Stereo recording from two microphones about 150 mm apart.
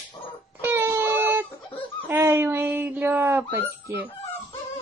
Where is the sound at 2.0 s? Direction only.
15° right (ahead or behind).